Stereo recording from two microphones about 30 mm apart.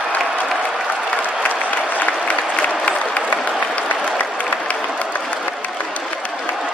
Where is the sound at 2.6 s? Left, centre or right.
Left.